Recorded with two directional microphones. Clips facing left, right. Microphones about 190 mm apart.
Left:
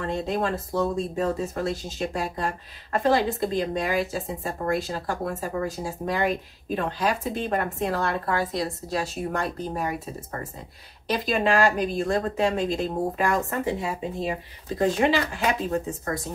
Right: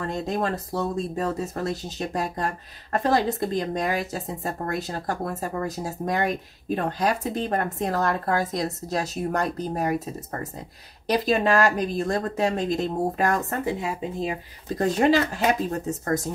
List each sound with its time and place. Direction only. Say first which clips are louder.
0.0 s speech: even; 40° right (ahead or behind)
14.8 s speech: right 2 dB; 40° right (ahead or behind)